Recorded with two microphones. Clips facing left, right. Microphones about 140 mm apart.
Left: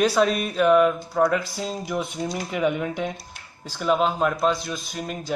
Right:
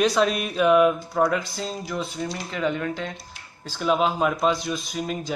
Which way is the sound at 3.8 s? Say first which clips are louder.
Even; centre (ahead or behind).